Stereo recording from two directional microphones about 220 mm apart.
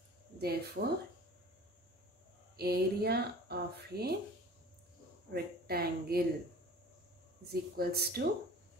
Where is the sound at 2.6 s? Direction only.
45° right (ahead or behind).